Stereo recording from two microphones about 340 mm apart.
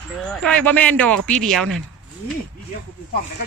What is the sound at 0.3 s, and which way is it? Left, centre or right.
A man's voice, centre.